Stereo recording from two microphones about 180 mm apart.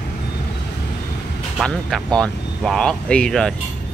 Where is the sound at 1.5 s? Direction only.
5° left (ahead or behind).